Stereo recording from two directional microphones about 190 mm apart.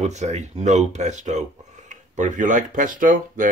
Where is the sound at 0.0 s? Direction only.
35° right (ahead or behind).